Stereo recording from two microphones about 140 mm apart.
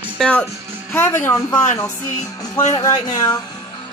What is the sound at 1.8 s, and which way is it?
Music, 20° left (ahead or behind).